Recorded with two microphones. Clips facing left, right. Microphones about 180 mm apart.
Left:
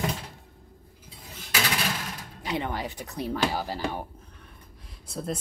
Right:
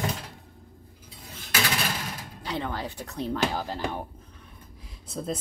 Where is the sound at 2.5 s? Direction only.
15° left (ahead or behind).